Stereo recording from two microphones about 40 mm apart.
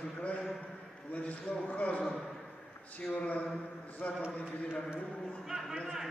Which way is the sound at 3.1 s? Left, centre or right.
Left.